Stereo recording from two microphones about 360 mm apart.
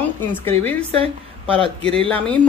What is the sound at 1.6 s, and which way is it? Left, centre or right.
Speech, centre.